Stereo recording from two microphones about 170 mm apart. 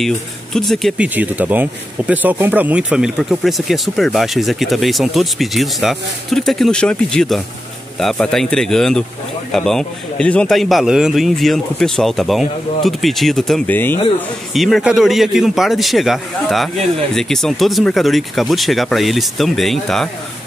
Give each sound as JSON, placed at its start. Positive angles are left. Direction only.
{"t": 0.0, "sound": "speech", "side_deg": 0}
{"t": 14.5, "sound": "speech", "side_deg": 0}